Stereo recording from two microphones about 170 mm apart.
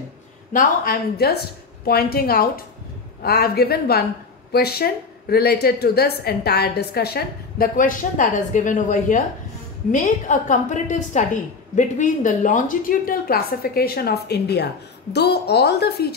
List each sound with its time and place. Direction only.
0.5 s a woman's voice: 55° left (ahead or behind); by 16.2 s 70° left (ahead or behind)